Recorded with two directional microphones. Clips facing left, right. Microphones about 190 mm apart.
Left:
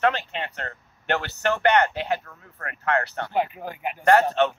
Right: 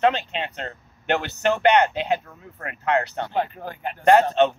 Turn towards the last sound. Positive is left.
turn(degrees=-20)  # may be behind; listen again after turning